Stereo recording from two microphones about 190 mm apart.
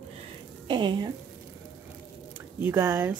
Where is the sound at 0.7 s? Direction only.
25° right (ahead or behind).